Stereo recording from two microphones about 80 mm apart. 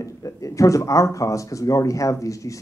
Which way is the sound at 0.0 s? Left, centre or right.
Left.